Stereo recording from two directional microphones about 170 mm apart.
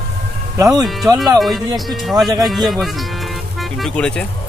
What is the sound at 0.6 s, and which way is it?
Speech, 20° right (ahead or behind).